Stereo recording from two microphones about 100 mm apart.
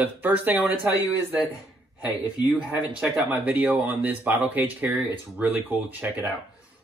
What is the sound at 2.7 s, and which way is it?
Speech, 15° right (ahead or behind).